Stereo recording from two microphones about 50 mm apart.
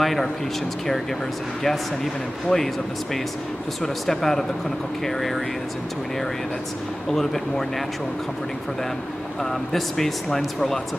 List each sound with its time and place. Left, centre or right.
0.0 s speech: centre
2.5 s speech: centre
3.8 s speech: centre
7.1 s speech: centre
9.4 s speech: centre